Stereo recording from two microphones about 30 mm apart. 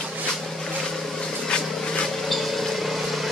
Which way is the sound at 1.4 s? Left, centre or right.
Left.